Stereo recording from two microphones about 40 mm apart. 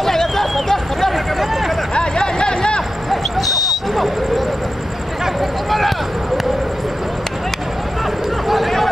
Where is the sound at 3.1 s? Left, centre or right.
Centre.